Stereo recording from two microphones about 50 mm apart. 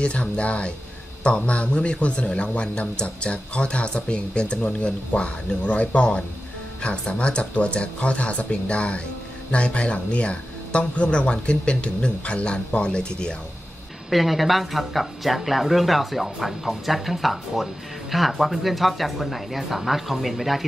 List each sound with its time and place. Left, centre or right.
0.0 s speech: left
14.1 s speech: centre